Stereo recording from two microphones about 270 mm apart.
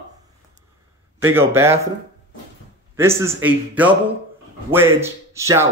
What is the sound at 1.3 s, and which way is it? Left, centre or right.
Speech, centre.